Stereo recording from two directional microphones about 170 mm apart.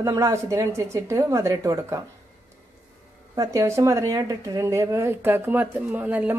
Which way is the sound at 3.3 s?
15° right (ahead or behind).